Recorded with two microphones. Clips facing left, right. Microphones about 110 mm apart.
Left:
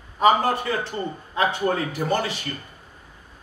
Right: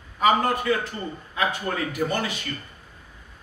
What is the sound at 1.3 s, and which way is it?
A man's voice, 30° left (ahead or behind).